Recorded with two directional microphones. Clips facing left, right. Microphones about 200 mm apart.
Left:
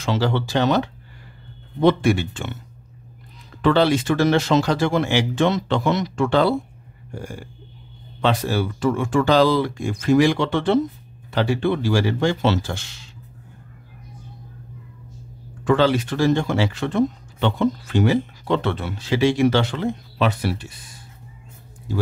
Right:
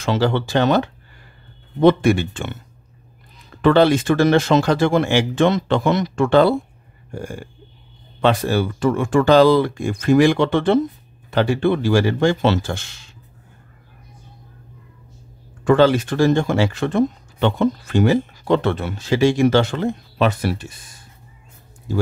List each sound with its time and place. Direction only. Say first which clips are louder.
0.0 s speech: right 3 dB; 55° right (ahead or behind)
3.6 s speech: right 3 dB; 50° right (ahead or behind)
15.6 s speech: right 4 dB; 50° right (ahead or behind)